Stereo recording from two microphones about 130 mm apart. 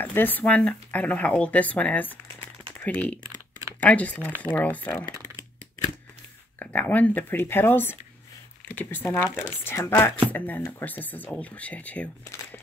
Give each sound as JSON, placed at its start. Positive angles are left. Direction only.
{"t": 0.0, "sound": "speech", "side_deg": 15}
{"t": 6.6, "sound": "speech", "side_deg": 10}